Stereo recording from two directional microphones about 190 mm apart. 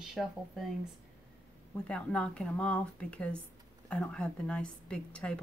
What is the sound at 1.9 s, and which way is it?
Speech, 5° left (ahead or behind).